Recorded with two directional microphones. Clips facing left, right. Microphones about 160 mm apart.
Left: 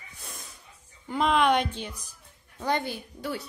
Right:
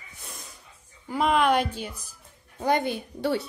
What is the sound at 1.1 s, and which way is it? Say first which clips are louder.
A woman's voice: right 1 dB; 5° right (ahead or behind).